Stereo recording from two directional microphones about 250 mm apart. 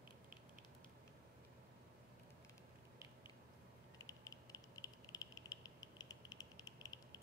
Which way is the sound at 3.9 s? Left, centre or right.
Centre.